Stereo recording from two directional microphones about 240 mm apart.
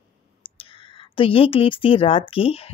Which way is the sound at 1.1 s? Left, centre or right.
Left.